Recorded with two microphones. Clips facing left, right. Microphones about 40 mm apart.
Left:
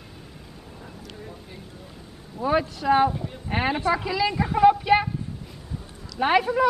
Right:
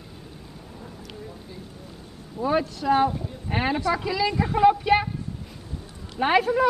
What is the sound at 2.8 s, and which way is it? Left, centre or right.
Speech, centre.